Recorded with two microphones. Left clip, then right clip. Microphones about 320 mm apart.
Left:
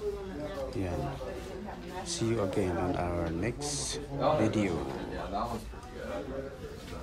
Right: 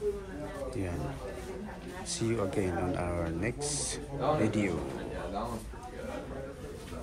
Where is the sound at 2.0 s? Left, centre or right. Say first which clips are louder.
Left 1 dB; centre.